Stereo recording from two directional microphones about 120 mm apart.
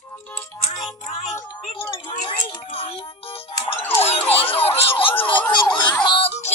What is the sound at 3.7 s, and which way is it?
Emergency vehicle, 60° left (ahead or behind).